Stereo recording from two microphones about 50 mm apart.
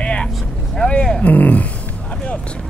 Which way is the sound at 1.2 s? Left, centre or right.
Left.